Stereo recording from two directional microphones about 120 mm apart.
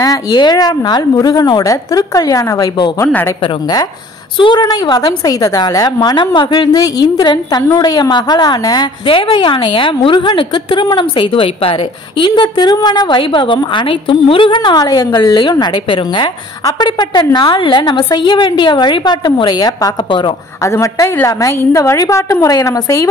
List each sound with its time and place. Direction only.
0.0 s a woman's voice: 35° left (ahead or behind)
3.1 s speech: 15° left (ahead or behind)
3.4 s a woman's voice: 35° left (ahead or behind)
20.6 s a woman's voice: 25° left (ahead or behind)